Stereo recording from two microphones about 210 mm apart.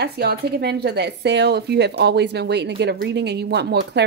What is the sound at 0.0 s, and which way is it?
A woman's voice, 50° right (ahead or behind).